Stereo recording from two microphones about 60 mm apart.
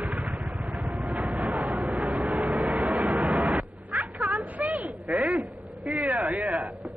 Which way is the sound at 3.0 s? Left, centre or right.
Right.